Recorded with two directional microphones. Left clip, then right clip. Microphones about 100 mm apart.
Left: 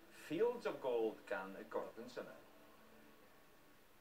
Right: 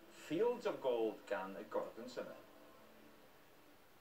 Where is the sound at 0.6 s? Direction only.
15° right (ahead or behind).